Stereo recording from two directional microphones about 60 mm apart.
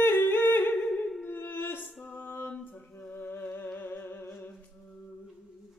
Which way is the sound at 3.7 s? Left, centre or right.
Left.